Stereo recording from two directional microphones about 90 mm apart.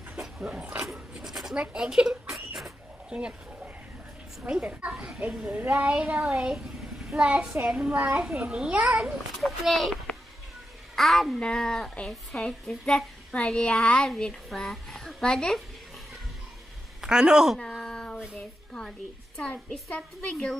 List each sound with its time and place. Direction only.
0.1 s dog: 10° right (ahead or behind)
0.8 s writing: 5° right (ahead or behind)
4.4 s speech: 15° right (ahead or behind)
9.3 s a child's voice: centre (ahead or behind)
17.0 s speech: 10° right (ahead or behind)
17.7 s a sound: 5° left (ahead or behind)
18.7 s a woman's voice: 5° left (ahead or behind)